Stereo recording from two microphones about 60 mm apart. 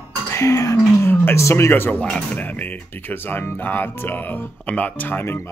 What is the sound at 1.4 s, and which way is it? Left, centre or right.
Speech, left.